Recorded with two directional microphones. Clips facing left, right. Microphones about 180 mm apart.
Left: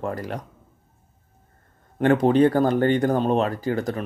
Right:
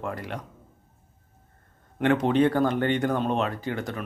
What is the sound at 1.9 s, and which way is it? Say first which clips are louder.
Speech: left 4 dB; 40° left (ahead or behind).